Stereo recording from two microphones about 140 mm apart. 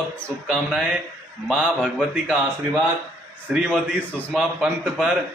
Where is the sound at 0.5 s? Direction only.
5° right (ahead or behind).